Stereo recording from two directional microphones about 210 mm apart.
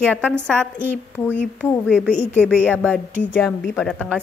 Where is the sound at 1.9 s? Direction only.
5° left (ahead or behind).